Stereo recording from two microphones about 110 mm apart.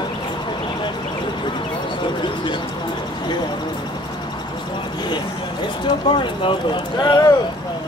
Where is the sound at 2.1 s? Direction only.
45° left (ahead or behind).